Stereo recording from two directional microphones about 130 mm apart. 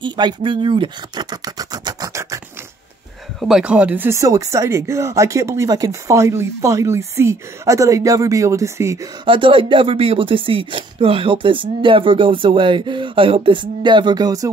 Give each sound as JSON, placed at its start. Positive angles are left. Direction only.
{"t": 0.0, "sound": "scratch", "side_deg": -35}
{"t": 3.3, "sound": "speech", "side_deg": -5}
{"t": 9.2, "sound": "speech", "side_deg": -40}